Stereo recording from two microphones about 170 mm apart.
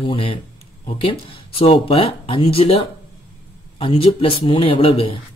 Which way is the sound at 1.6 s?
35° left (ahead or behind).